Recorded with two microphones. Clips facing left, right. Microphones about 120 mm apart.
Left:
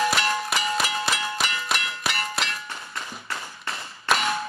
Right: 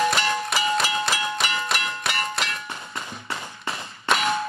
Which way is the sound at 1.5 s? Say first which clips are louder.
Right 2 dB; 25° right (ahead or behind).